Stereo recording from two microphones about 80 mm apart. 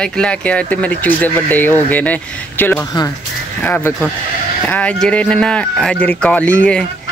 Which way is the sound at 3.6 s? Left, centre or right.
Left.